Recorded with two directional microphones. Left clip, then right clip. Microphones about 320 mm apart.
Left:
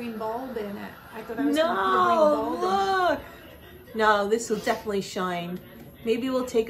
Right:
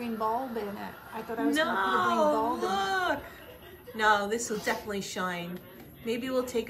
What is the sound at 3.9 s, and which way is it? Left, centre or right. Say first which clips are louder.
A woman's voice: left 4 dB; centre.